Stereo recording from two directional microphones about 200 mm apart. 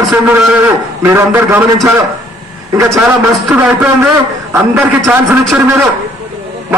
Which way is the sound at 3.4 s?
10° right (ahead or behind).